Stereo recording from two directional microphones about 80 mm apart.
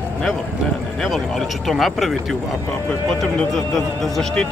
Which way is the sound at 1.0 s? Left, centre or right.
Centre.